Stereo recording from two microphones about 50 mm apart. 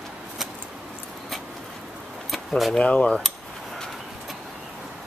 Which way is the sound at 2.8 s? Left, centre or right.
Left.